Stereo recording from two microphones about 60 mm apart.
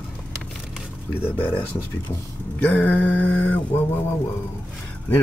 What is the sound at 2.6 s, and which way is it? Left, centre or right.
Mantra, left.